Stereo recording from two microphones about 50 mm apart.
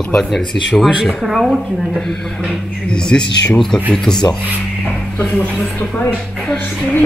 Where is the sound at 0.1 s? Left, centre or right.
Centre.